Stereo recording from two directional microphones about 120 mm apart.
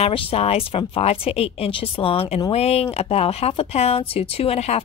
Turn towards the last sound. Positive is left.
turn(degrees=60)  # may be behind; listen again after turning